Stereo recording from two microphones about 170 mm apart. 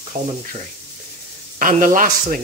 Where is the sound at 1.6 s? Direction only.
50° right (ahead or behind).